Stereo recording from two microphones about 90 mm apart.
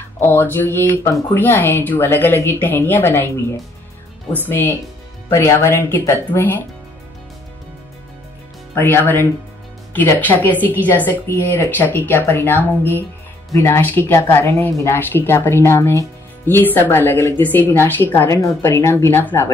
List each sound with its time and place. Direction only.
0.2 s speech: 25° left (ahead or behind)
4.5 s speech: 25° left (ahead or behind)
8.7 s speech: 25° left (ahead or behind)